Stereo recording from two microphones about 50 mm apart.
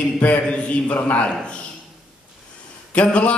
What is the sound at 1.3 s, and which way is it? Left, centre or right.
Speech, centre.